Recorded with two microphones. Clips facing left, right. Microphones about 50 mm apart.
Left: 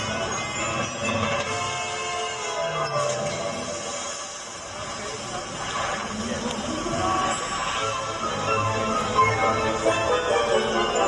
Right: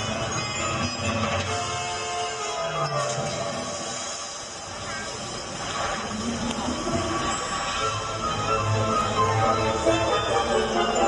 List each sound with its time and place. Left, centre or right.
0.7 s train: left
2.7 s music: left
5.8 s a sound: left
6.7 s music: left